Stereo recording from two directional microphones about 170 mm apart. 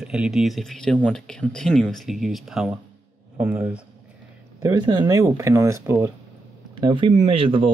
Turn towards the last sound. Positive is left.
turn(degrees=-30)  # may be behind; listen again after turning